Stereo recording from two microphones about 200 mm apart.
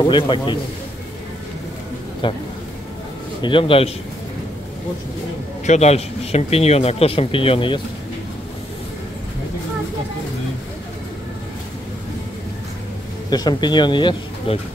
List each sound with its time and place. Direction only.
0.0 s speech: 25° left (ahead or behind)
2.2 s speech: 25° left (ahead or behind)
3.4 s speech: 25° left (ahead or behind)
5.7 s speech: 30° left (ahead or behind)
13.3 s speech: 20° left (ahead or behind)